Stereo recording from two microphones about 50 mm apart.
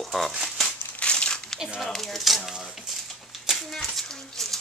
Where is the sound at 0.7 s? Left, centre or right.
Left.